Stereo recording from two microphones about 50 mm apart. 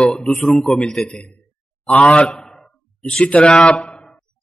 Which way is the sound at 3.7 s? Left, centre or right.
Centre.